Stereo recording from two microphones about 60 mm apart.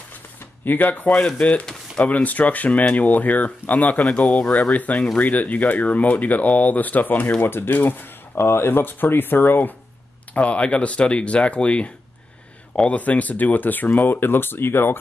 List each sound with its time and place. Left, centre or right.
0.7 s speech: left
10.3 s speech: left